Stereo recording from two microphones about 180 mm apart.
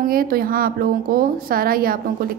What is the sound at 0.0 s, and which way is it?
Speech, 55° right (ahead or behind).